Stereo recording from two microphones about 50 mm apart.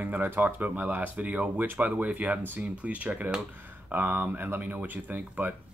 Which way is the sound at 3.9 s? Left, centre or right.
Right.